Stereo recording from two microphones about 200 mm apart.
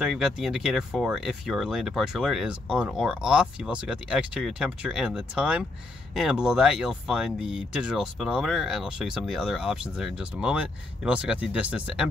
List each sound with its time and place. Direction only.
0.0 s speech: centre (ahead or behind)